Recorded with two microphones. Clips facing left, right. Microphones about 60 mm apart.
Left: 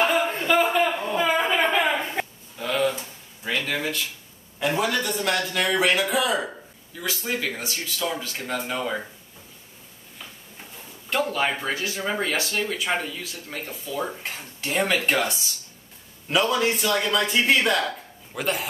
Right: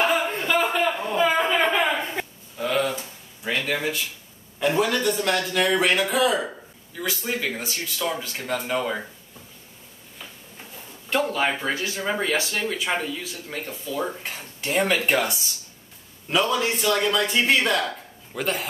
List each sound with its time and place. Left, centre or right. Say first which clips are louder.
0.0 s a sound: even; centre
4.6 s a man's voice: right 2 dB; centre
10.1 s a man's voice: right 1 dB; centre